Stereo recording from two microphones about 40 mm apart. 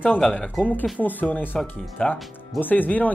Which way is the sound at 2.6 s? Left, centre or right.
Left.